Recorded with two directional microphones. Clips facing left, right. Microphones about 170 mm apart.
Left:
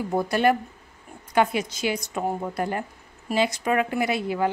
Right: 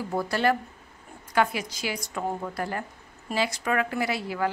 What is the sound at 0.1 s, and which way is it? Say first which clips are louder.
A woman's voice: left 3 dB; 20° left (ahead or behind).